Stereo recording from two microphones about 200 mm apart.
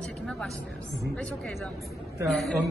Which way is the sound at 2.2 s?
Centre (ahead or behind).